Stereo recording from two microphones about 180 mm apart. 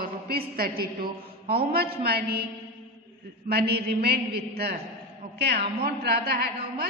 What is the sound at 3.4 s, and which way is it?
A man's voice, 60° right (ahead or behind).